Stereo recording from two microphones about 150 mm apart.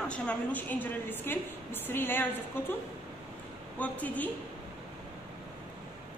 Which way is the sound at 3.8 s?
10° left (ahead or behind).